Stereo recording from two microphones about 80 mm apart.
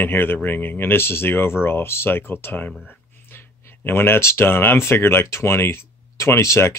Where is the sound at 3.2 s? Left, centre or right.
Left.